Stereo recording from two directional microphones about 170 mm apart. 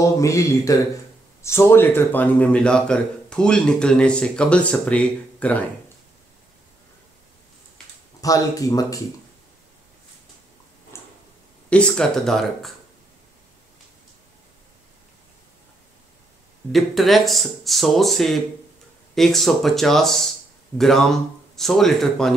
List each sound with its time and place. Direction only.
0.2 s a man's voice: 20° left (ahead or behind)
8.2 s speech: 20° left (ahead or behind)
10.9 s tick-tock: 15° left (ahead or behind)
11.7 s speech: 5° left (ahead or behind)
16.7 s speech: centre (ahead or behind)